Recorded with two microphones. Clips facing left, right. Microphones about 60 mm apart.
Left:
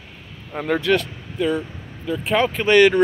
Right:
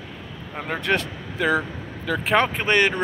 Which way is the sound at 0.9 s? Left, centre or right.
Right.